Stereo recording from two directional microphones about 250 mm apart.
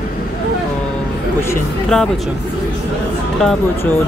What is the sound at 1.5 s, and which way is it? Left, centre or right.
Speech, centre.